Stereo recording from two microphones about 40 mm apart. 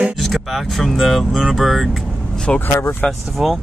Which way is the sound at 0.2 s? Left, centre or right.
Centre.